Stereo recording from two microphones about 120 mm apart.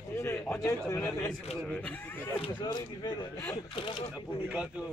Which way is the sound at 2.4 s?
40° left (ahead or behind).